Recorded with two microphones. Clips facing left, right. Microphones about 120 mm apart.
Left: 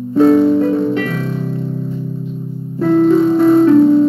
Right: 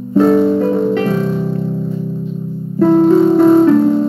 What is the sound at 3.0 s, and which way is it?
Music, 30° right (ahead or behind).